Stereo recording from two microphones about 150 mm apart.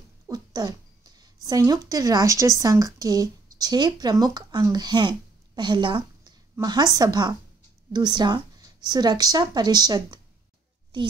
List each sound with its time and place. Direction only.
0.3 s a woman's voice: 25° right (ahead or behind)